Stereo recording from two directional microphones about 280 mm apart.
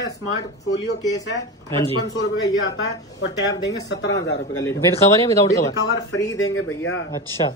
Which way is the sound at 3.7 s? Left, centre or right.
Left.